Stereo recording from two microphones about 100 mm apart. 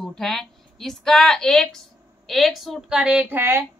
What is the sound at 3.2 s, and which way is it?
Speech, 20° right (ahead or behind).